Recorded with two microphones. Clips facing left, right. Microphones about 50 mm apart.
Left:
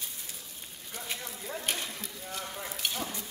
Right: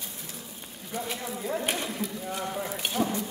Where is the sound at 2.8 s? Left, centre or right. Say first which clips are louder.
Right 1 dB; centre.